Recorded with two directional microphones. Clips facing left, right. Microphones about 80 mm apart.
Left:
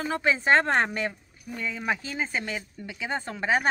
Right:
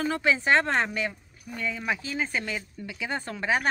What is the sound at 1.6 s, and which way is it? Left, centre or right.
A woman's voice, left.